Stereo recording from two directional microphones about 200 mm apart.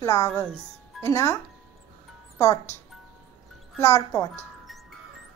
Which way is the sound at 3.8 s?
15° left (ahead or behind).